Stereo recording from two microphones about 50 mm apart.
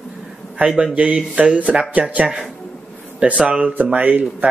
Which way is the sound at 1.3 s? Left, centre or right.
Right.